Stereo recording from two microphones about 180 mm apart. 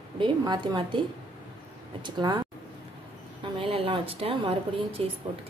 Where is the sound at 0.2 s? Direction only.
25° right (ahead or behind).